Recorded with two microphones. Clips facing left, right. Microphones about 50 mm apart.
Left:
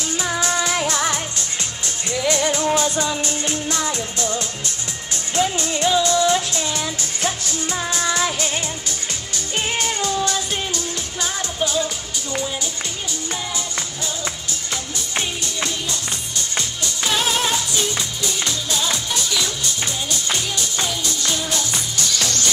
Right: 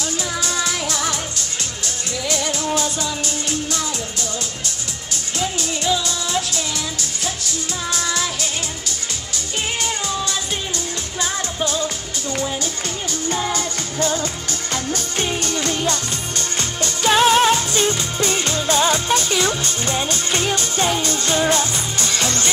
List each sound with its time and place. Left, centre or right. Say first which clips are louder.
0.2 s music: left 5 dB; left
2.2 s music: left 4 dB; left
5.3 s music: left 4 dB; left
7.9 s music: left 1 dB; left
13.3 s music: right 7 dB; right
15.4 s music: right 5 dB; right